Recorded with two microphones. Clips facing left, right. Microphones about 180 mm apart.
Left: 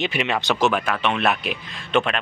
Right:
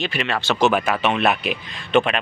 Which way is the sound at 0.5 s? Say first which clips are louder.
Right 3 dB; 5° right (ahead or behind).